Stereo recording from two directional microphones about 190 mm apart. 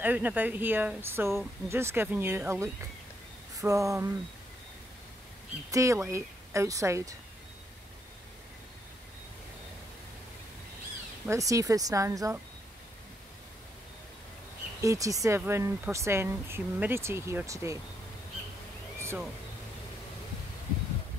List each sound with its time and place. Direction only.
0.0 s speech: 10° right (ahead or behind)
5.7 s speech: 15° right (ahead or behind)
11.2 s speech: 15° right (ahead or behind)
14.8 s speech: 15° right (ahead or behind)
18.9 s a sound: 15° right (ahead or behind)